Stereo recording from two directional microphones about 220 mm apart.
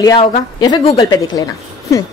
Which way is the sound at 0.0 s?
20° left (ahead or behind).